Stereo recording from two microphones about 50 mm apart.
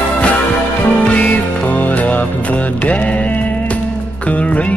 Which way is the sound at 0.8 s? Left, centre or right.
Left.